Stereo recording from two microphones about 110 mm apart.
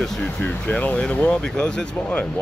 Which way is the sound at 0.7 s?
10° left (ahead or behind).